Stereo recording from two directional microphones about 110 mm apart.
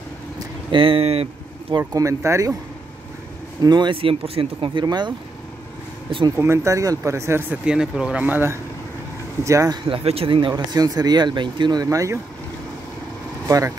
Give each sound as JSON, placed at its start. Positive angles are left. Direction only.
{"t": 0.7, "sound": "speech", "side_deg": -55}
{"t": 2.0, "sound": "speech", "side_deg": -30}
{"t": 3.6, "sound": "speech", "side_deg": -40}
{"t": 4.8, "sound": "speech", "side_deg": -40}
{"t": 6.4, "sound": "speech", "side_deg": -25}
{"t": 7.6, "sound": "speech", "side_deg": -5}
{"t": 9.4, "sound": "speech", "side_deg": -30}
{"t": 9.8, "sound": "speech", "side_deg": -60}
{"t": 10.5, "sound": "speech", "side_deg": -35}
{"t": 13.5, "sound": "speech", "side_deg": -30}